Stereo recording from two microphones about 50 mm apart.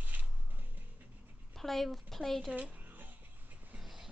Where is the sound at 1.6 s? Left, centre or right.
Centre.